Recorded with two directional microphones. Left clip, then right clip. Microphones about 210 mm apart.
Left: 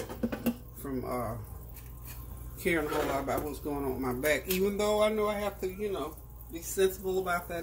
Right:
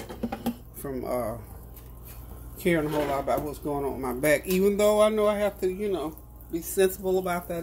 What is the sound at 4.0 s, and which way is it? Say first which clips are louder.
Speech: right 6 dB; 55° right (ahead or behind).